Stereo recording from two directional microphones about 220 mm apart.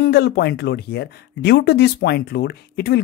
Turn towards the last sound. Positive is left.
turn(degrees=50)  # may be behind; listen again after turning